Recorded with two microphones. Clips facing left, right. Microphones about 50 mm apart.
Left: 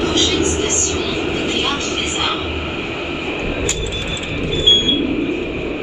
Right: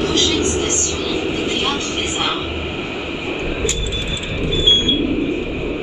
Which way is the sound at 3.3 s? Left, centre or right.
Centre.